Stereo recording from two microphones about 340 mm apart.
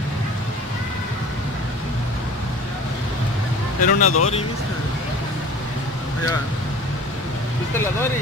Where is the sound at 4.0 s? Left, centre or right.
Left.